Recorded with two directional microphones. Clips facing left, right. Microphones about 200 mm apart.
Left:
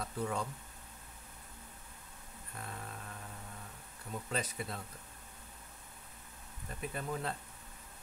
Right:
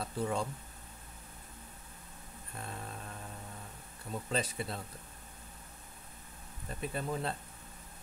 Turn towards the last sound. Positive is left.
turn(degrees=-30)  # may be behind; listen again after turning